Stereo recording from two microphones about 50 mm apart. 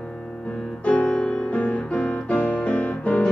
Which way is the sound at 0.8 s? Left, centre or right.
Left.